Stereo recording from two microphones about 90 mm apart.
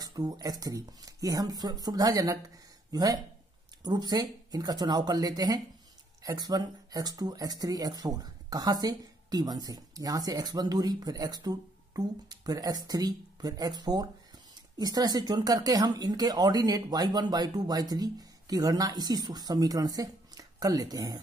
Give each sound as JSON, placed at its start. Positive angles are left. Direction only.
{"t": 0.0, "sound": "speech", "side_deg": -45}